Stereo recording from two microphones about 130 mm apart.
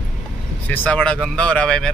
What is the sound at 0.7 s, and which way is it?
Speech, 10° left (ahead or behind).